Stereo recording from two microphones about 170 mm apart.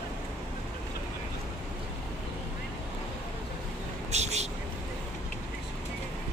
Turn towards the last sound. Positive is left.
turn(degrees=-40)  # may be behind; listen again after turning